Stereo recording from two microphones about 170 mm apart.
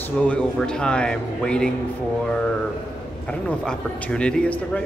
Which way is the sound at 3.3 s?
5° left (ahead or behind).